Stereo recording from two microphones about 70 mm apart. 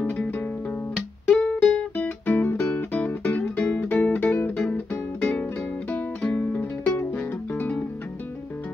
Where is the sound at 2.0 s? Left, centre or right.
Left.